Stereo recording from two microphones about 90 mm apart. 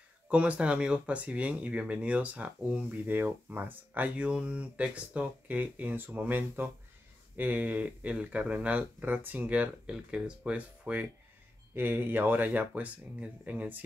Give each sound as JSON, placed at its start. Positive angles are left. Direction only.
{"t": 0.3, "sound": "speech", "side_deg": -15}